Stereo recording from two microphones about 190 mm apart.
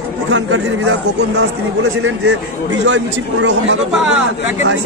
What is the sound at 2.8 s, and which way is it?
Speech, 70° right (ahead or behind).